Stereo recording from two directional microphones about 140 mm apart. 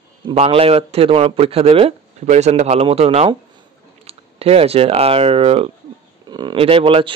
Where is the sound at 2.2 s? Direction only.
55° right (ahead or behind).